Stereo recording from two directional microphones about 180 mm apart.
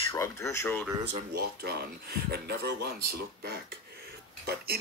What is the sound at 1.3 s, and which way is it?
Speech, 60° right (ahead or behind).